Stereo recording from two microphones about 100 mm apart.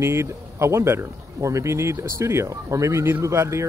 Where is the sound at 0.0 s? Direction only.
25° right (ahead or behind).